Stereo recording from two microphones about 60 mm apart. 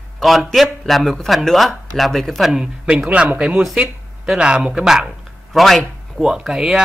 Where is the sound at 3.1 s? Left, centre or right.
Right.